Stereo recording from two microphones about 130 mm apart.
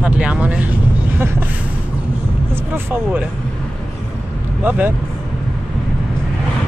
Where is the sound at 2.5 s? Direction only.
15° right (ahead or behind).